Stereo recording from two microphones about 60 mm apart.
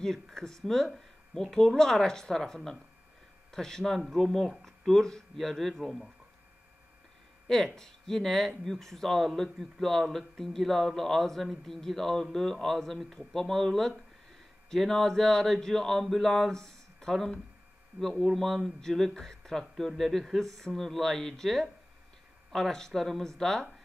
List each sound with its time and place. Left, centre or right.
0.0 s speech: centre
7.4 s speech: centre